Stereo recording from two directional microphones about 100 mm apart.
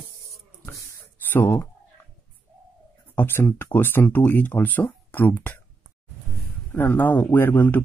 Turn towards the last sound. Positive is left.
turn(degrees=20)  # may be behind; listen again after turning